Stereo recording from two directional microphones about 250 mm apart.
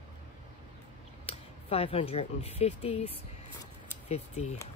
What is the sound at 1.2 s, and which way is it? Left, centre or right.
Speech, left.